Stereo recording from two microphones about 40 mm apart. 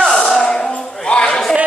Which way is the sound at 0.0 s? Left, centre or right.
Centre.